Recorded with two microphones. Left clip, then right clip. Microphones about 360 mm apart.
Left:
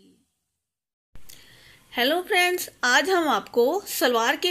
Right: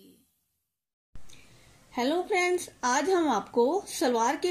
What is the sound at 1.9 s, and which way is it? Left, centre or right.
Speech, left.